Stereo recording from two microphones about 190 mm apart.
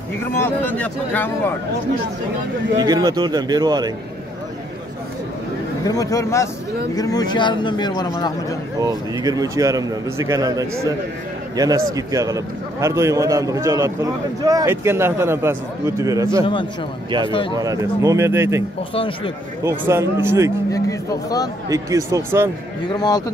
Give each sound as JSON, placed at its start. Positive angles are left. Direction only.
{"t": 0.4, "sound": "speech", "side_deg": 10}
{"t": 2.8, "sound": "speech", "side_deg": -20}
{"t": 5.9, "sound": "a man's voice", "side_deg": 20}
{"t": 8.7, "sound": "a man's voice", "side_deg": -20}
{"t": 17.3, "sound": "a man's voice", "side_deg": 25}
{"t": 17.6, "sound": "a man's voice", "side_deg": -15}
{"t": 18.9, "sound": "a man's voice", "side_deg": 30}
{"t": 19.6, "sound": "a man's voice", "side_deg": -15}
{"t": 20.7, "sound": "a man's voice", "side_deg": 20}
{"t": 21.6, "sound": "a man's voice", "side_deg": -15}
{"t": 22.8, "sound": "a man's voice", "side_deg": 20}